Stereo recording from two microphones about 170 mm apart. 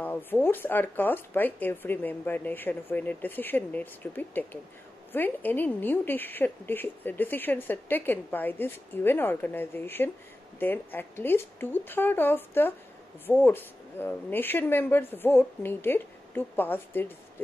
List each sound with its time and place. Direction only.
0.0 s a woman's voice: 10° left (ahead or behind)